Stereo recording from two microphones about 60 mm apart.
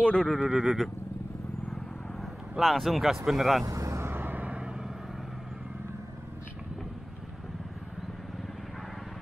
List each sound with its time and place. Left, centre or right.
0.0 s speech: centre
0.4 s speech: centre
2.6 s speech: centre
3.6 s vehicle: right
4.0 s vehicle: right; by 4.7 s centre